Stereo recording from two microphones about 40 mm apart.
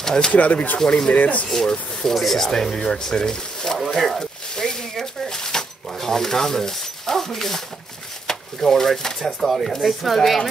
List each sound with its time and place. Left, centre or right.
0.0 s speech: centre
0.3 s speech: left
0.8 s speech: centre
1.1 s speech: left
1.7 s speech: left
2.1 s speech: centre
3.7 s a sound: centre
8.3 s speech: centre
9.4 s speech: centre